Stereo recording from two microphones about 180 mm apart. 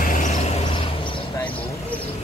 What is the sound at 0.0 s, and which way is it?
Vehicle, 45° left (ahead or behind).